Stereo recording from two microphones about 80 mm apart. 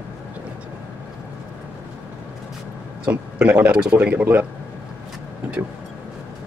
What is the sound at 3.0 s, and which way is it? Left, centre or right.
A man's voice, centre.